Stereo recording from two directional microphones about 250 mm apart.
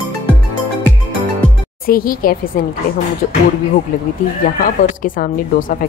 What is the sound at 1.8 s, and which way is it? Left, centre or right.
Speech, left.